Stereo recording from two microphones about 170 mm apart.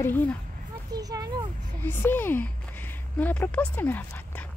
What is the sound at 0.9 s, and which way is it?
Speech, 20° right (ahead or behind).